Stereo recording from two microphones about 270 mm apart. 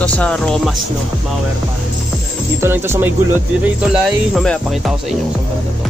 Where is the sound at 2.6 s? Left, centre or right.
Centre.